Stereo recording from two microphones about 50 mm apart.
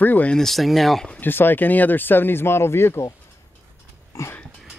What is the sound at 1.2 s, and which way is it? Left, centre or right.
Speech, left.